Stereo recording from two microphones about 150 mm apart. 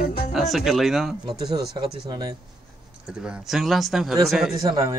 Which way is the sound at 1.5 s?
25° right (ahead or behind).